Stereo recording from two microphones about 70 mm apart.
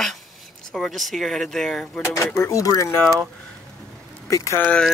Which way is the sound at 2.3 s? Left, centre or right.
Left.